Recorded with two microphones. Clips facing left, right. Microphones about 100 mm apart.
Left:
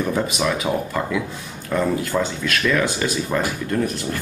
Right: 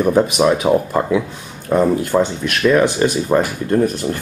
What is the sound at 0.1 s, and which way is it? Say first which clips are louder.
Speech: right 8 dB; 30° right (ahead or behind).